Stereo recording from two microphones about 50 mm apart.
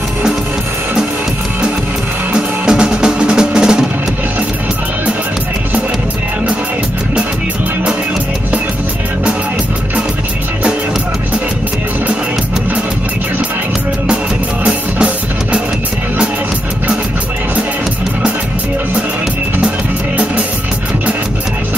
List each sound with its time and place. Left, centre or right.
2.3 s music: centre
14.6 s music: right